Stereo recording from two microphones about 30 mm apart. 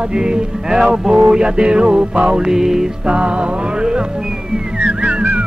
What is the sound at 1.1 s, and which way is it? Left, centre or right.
Music, right.